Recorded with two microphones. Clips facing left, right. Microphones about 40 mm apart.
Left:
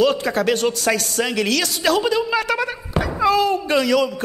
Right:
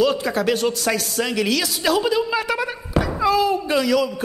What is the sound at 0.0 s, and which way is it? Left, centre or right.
A woman's voice, centre.